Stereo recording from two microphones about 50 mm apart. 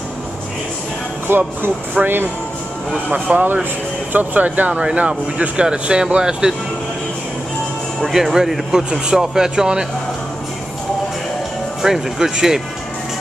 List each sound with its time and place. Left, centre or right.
1.2 s speech: right
2.0 s speech: right
3.3 s speech: right
4.7 s speech: right
8.1 s speech: centre
11.8 s speech: centre